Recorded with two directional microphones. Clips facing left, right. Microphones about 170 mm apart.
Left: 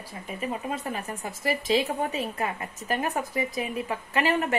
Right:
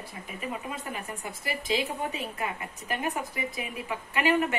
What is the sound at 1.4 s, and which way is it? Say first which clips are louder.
A woman's voice: left 5 dB; 45° left (ahead or behind).